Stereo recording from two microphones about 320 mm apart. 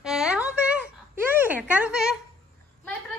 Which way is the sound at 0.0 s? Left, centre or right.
Centre.